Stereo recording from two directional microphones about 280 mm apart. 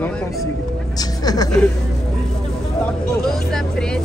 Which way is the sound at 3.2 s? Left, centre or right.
Centre.